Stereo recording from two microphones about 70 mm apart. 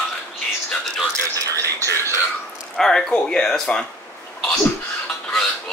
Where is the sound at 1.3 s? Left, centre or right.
Right.